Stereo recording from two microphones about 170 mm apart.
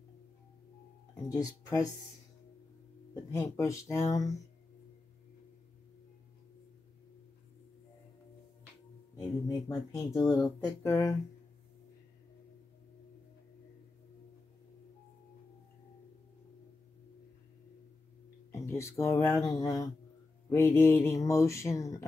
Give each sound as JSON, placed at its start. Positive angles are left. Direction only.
{"t": 1.3, "sound": "speech", "side_deg": 20}
{"t": 3.3, "sound": "speech", "side_deg": 15}
{"t": 9.5, "sound": "speech", "side_deg": 20}
{"t": 18.5, "sound": "speech", "side_deg": 15}